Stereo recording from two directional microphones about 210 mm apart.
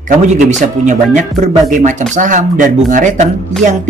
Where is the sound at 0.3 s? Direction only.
35° right (ahead or behind).